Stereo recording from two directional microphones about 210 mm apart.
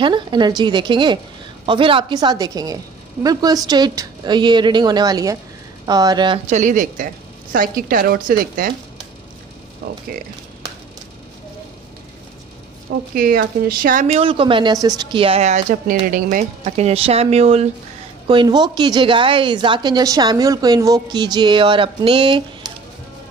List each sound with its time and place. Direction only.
0.0 s a woman's voice: 20° right (ahead or behind)
6.5 s a woman's voice: 35° right (ahead or behind)
9.8 s speech: 50° right (ahead or behind)
13.1 s a woman's voice: 45° right (ahead or behind); by 22.7 s 20° right (ahead or behind)